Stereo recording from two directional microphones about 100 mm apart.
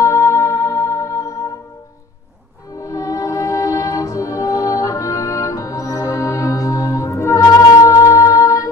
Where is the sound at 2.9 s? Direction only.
35° left (ahead or behind).